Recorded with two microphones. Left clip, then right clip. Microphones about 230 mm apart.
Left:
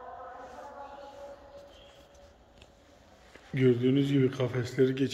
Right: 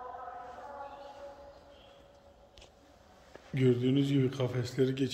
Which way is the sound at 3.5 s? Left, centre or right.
Centre.